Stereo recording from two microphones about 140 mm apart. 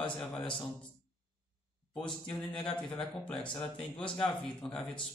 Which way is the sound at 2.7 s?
5° left (ahead or behind).